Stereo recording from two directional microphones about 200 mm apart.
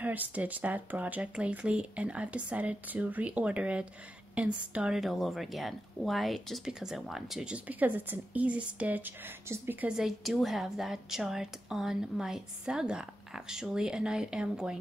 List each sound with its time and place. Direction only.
0.0 s a woman's voice: 5° right (ahead or behind)